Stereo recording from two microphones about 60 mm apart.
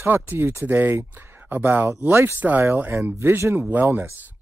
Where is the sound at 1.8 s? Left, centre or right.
Right.